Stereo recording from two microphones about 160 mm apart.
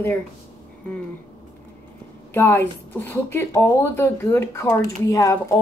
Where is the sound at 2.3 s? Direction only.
15° left (ahead or behind).